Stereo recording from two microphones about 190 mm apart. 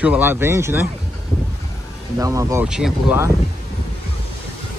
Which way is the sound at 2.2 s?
15° right (ahead or behind).